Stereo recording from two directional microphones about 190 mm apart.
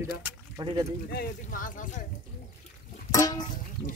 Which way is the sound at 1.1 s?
50° left (ahead or behind).